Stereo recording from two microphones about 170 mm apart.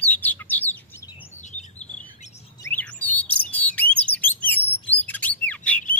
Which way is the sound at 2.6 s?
10° left (ahead or behind).